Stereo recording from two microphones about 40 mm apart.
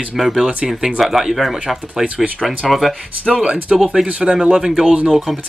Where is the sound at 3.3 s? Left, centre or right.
Right.